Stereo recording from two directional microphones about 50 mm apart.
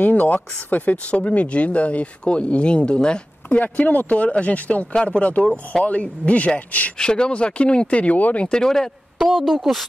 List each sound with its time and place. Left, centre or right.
0.0 s speech: left; by 3.2 s centre
3.4 s speech: left
7.0 s speech: centre
8.5 s speech: centre
9.2 s a woman's voice: centre